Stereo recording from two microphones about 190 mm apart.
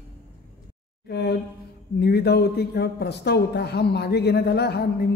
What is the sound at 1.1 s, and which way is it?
A woman's voice, 60° left (ahead or behind).